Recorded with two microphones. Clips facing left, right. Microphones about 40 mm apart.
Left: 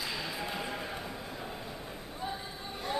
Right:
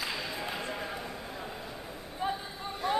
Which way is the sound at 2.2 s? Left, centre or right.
Right.